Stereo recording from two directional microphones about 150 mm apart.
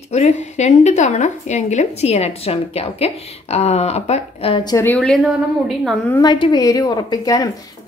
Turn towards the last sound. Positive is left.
turn(degrees=25)  # may be behind; listen again after turning